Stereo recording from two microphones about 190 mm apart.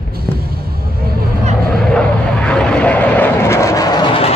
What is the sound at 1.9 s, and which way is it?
Vehicle, 5° left (ahead or behind).